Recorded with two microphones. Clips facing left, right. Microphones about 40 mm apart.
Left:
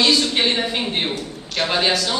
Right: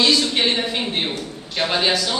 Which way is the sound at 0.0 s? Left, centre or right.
Centre.